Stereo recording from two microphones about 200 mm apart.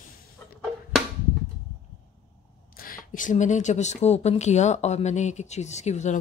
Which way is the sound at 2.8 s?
45° left (ahead or behind).